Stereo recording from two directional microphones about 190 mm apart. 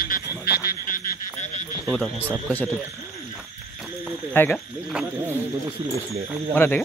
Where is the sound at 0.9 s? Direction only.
40° left (ahead or behind).